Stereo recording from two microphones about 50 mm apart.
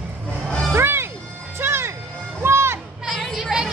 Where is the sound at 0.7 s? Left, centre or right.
Right.